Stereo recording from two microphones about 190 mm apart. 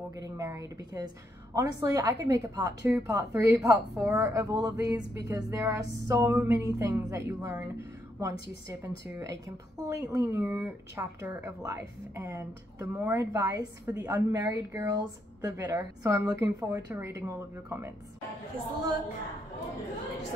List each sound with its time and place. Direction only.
0.1 s speech: 15° right (ahead or behind)